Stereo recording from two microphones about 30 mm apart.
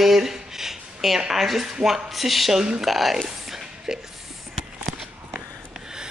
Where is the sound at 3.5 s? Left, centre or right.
Centre.